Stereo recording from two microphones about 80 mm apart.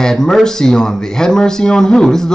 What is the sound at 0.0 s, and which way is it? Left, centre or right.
A man's voice, centre.